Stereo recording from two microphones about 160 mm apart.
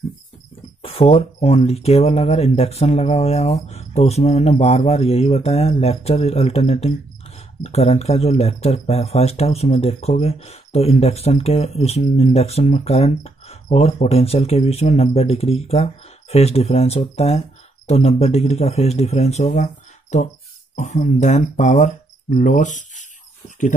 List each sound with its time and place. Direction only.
0.8 s speech: 35° left (ahead or behind)